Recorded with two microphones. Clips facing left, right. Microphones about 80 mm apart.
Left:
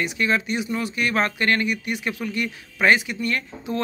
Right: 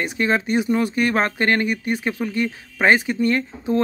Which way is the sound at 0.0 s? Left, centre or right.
Right.